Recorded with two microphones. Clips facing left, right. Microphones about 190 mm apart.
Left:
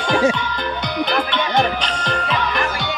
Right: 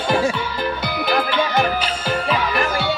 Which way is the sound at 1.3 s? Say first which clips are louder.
Even; 5° right (ahead or behind).